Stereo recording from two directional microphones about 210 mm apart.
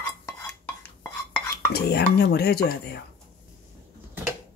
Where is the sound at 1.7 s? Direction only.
50° left (ahead or behind).